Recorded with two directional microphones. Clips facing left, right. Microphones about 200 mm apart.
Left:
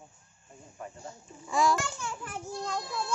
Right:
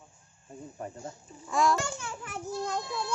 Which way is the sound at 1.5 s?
Centre (ahead or behind).